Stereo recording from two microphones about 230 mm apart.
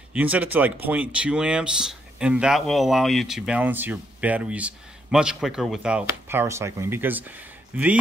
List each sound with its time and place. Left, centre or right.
0.1 s speech: centre